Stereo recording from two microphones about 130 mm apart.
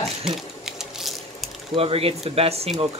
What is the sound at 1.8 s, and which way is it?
Speech, 50° right (ahead or behind).